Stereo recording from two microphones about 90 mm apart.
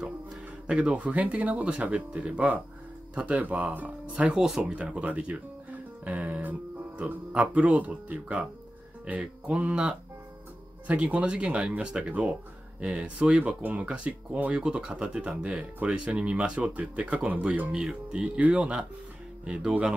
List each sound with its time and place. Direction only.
0.0 s speech: 10° right (ahead or behind)